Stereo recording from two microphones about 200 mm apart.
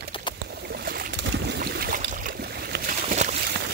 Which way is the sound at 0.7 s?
50° right (ahead or behind).